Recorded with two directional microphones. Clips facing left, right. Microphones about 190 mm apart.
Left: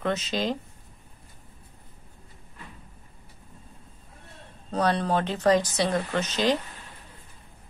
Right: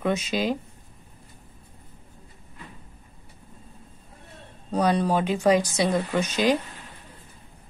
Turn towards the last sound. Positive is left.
turn(degrees=-10)  # may be behind; listen again after turning